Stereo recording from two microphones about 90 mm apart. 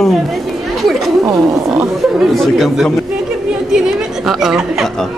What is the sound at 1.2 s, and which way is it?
Speech, 35° right (ahead or behind).